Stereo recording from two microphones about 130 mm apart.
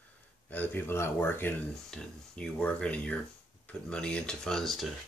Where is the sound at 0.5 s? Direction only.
15° left (ahead or behind).